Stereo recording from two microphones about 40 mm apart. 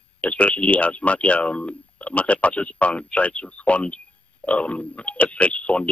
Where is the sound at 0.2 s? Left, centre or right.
Left.